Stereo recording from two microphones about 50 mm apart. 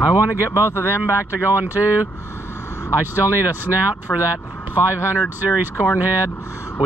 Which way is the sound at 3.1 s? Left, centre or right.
Right.